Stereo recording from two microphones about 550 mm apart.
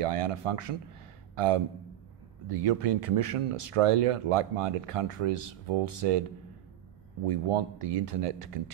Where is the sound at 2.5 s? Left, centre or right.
Right.